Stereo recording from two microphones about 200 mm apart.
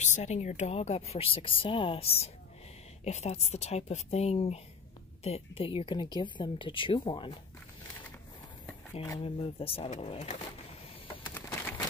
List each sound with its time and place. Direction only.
0.0 s a woman's voice: 35° left (ahead or behind)
9.2 s speech: 30° left (ahead or behind)
11.3 s a sound: 10° left (ahead or behind)